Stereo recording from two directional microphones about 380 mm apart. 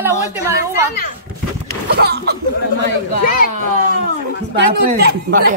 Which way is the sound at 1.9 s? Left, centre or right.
Right.